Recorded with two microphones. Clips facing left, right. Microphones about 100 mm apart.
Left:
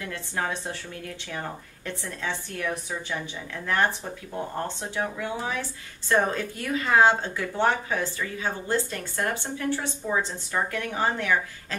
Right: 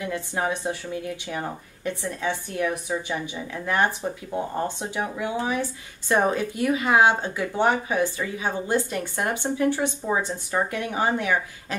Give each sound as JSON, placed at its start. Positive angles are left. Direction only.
{"t": 0.0, "sound": "speech", "side_deg": -15}